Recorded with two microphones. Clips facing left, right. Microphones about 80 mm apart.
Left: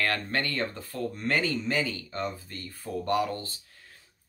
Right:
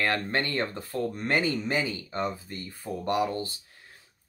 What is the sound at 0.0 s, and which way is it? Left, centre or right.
Speech, right.